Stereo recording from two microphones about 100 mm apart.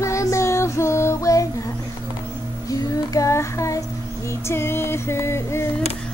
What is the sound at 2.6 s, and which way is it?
Child singing, 35° left (ahead or behind).